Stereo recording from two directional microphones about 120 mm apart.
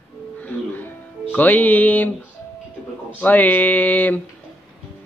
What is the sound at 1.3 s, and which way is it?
Speech, 15° left (ahead or behind).